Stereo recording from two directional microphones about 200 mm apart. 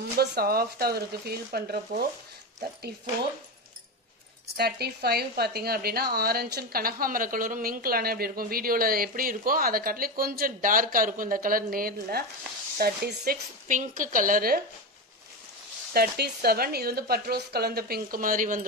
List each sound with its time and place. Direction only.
0.2 s a woman's voice: 55° right (ahead or behind)
4.6 s a woman's voice: 55° right (ahead or behind)
15.9 s a woman's voice: 50° right (ahead or behind)